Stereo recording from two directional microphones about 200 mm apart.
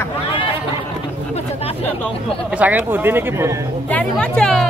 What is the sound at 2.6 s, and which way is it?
Speech, 10° right (ahead or behind).